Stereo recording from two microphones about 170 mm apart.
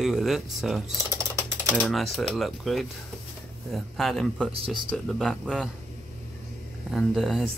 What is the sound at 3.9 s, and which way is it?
Speech, centre (ahead or behind).